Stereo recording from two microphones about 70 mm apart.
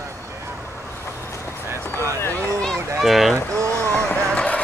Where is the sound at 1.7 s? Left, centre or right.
Right.